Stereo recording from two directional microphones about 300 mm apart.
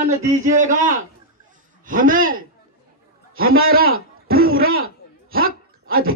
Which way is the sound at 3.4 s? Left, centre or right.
Right.